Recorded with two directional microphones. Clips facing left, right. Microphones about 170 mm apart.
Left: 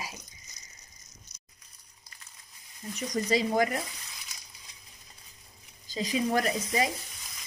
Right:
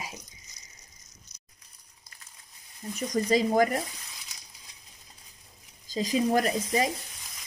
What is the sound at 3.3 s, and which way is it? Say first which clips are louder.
Speech: right 3 dB; 40° right (ahead or behind).